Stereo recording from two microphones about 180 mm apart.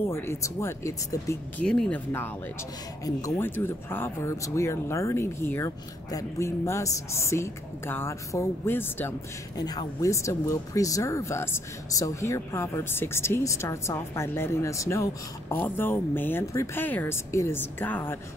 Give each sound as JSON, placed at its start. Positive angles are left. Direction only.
{"t": 0.0, "sound": "speech", "side_deg": 15}
{"t": 1.6, "sound": "speech", "side_deg": 5}
{"t": 9.6, "sound": "speech", "side_deg": 20}